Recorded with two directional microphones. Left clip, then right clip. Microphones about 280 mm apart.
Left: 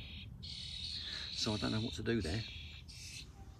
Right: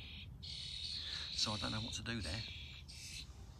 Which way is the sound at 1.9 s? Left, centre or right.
Centre.